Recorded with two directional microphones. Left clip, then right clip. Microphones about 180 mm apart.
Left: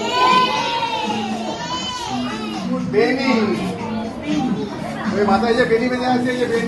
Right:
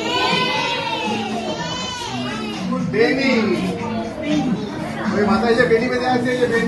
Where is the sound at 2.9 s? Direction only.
60° left (ahead or behind).